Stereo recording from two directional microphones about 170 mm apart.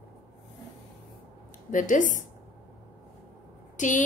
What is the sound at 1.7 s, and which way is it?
Speech, 50° left (ahead or behind).